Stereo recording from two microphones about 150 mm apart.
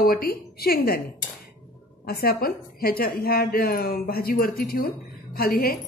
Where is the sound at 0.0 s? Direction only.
80° left.